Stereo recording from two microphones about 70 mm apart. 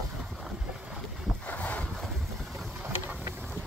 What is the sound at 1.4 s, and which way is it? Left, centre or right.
Boat, left.